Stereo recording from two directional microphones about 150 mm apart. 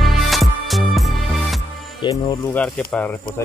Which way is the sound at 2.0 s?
30° left (ahead or behind).